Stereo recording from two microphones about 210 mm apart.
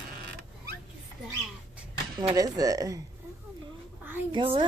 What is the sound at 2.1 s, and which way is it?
Speech, 15° right (ahead or behind).